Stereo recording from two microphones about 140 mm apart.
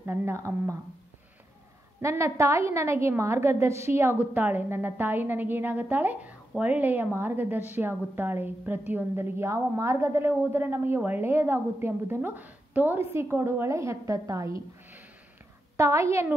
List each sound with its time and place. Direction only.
0.0 s a woman's voice: 15° right (ahead or behind)
2.0 s a woman's voice: 20° right (ahead or behind)
15.8 s a woman's voice: 20° right (ahead or behind)